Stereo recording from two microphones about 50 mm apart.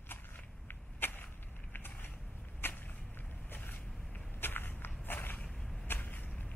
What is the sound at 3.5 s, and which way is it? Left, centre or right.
Vehicle, left.